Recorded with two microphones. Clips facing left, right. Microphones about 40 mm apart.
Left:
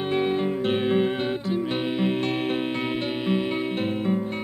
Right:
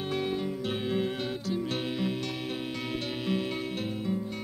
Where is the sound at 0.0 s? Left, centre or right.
Left.